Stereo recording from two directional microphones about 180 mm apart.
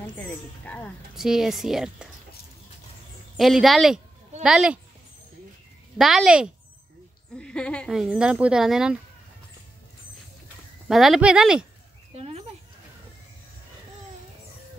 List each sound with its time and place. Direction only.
0.0 s speech: 10° left (ahead or behind)
1.1 s speech: 5° right (ahead or behind)
3.3 s speech: centre (ahead or behind)
5.9 s speech: centre (ahead or behind)
10.9 s speech: centre (ahead or behind)
12.2 s a sound: 35° right (ahead or behind)